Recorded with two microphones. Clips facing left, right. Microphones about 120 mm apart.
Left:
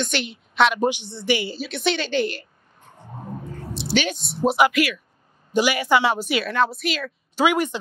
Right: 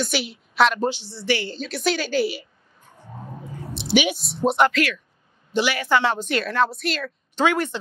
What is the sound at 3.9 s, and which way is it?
Speech, 15° right (ahead or behind).